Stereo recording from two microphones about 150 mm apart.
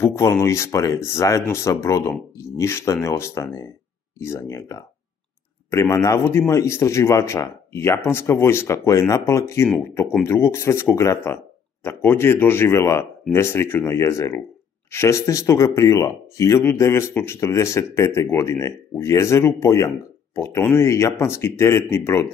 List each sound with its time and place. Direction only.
0.0 s speech: 20° left (ahead or behind)